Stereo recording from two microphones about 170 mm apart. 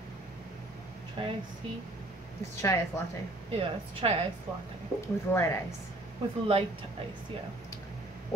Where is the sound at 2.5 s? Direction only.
15° left (ahead or behind).